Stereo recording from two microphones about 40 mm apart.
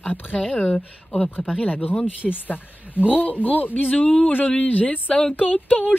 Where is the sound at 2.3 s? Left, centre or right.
Left.